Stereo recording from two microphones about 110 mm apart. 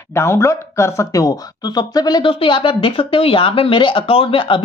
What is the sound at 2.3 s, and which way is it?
Speech, 50° left (ahead or behind).